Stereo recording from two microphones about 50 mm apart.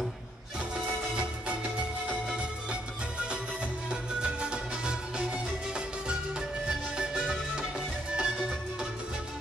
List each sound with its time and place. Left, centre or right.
1.1 s music: centre